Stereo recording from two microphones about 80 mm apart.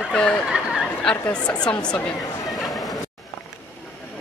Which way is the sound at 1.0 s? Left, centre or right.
Centre.